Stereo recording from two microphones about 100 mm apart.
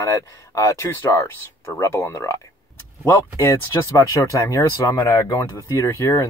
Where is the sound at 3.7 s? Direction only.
25° left (ahead or behind).